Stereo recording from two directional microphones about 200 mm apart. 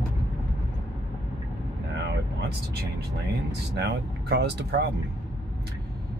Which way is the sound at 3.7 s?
55° right (ahead or behind).